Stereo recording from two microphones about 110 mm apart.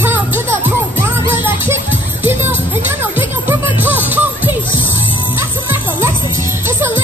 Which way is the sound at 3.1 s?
20° right (ahead or behind).